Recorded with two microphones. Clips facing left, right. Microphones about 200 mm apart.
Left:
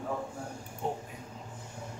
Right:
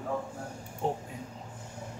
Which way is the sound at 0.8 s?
30° right (ahead or behind).